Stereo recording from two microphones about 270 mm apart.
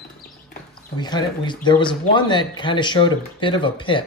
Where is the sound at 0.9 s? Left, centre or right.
Centre.